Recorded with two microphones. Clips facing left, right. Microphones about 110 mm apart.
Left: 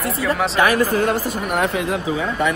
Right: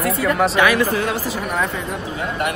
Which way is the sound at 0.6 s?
45° left (ahead or behind).